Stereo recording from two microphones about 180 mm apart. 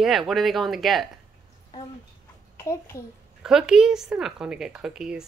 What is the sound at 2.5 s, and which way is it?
Speech, 15° left (ahead or behind).